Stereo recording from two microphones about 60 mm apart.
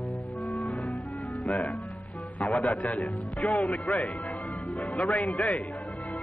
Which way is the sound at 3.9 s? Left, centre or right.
Left.